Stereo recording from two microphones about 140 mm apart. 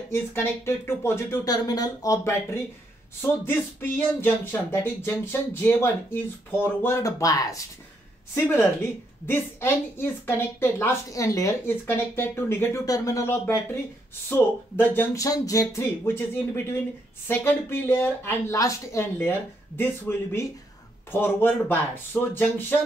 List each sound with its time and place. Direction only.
0.1 s a woman's voice: 15° left (ahead or behind)
15.2 s a woman's voice: 25° left (ahead or behind)